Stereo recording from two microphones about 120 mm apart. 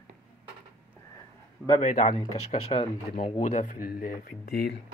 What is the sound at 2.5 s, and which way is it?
Speech, 55° left (ahead or behind).